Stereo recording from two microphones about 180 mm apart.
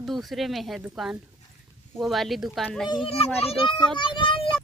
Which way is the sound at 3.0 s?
35° left (ahead or behind).